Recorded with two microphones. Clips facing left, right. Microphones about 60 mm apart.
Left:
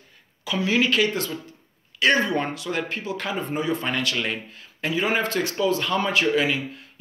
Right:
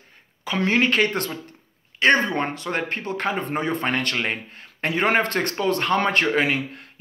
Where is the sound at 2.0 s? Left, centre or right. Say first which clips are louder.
Right 2 dB; right.